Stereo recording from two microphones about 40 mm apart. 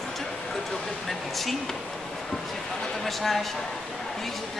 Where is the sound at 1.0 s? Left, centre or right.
Centre.